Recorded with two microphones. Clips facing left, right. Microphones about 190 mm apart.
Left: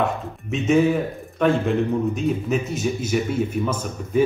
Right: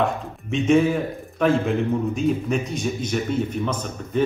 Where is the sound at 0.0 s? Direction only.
Centre (ahead or behind).